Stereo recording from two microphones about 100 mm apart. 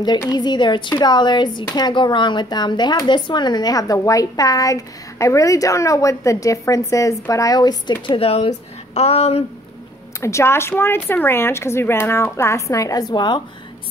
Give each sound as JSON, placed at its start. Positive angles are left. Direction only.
{"t": 0.2, "sound": "speech", "side_deg": 45}
{"t": 8.1, "sound": "speech", "side_deg": 80}
{"t": 8.9, "sound": "speech", "side_deg": 90}
{"t": 10.2, "sound": "speech", "side_deg": 30}